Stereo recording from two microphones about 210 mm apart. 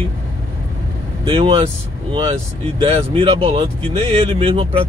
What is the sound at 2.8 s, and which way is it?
Speech, 25° right (ahead or behind).